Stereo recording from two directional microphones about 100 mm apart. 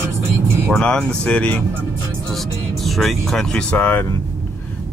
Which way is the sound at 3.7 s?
20° left (ahead or behind).